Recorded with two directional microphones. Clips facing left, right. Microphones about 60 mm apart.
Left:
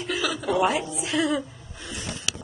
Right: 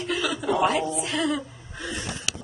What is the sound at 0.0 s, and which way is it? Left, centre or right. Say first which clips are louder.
A woman's voice: right 1 dB; centre.